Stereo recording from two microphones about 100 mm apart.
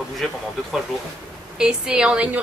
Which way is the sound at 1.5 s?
5° right (ahead or behind).